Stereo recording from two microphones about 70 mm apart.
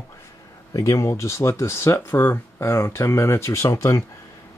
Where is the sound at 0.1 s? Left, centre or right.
Left.